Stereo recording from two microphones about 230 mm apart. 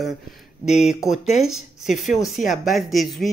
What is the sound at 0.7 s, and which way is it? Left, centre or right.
Speech, left.